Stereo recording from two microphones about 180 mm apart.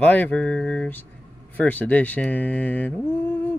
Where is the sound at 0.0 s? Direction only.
10° left (ahead or behind).